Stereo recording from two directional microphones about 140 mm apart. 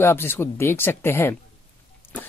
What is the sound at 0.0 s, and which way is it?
Speech, 15° left (ahead or behind).